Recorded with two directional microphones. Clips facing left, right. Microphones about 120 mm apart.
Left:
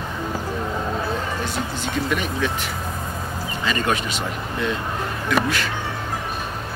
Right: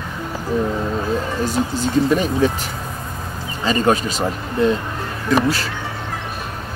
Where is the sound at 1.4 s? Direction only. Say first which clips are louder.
Right 6 dB; 40° right (ahead or behind).